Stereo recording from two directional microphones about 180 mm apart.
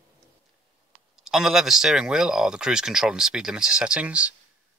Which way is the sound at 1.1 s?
Centre (ahead or behind).